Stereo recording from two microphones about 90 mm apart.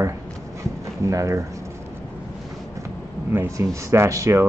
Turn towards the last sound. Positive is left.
turn(degrees=-35)  # may be behind; listen again after turning